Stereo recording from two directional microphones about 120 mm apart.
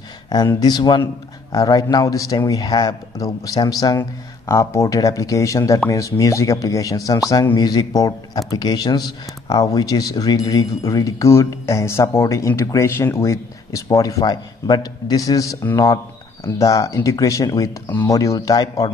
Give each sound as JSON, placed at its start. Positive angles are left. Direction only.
{"t": 0.6, "sound": "a man's voice", "side_deg": 35}